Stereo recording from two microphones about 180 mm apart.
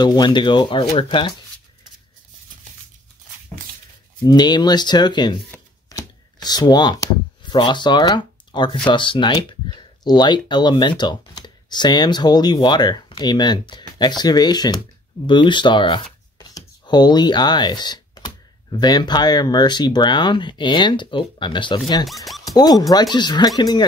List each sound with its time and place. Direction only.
0.0 s speech: 25° left (ahead or behind)
4.2 s speech: 25° left (ahead or behind)
22.0 s speech: centre (ahead or behind)
22.4 s speech: 20° left (ahead or behind)